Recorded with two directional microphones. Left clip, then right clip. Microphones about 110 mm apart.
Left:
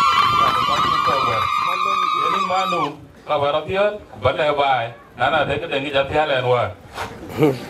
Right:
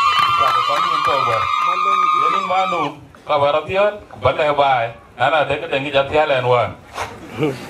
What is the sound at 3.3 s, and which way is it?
A man's voice, 20° right (ahead or behind).